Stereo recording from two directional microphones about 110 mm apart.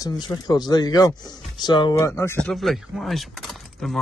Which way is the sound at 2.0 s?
25° left (ahead or behind).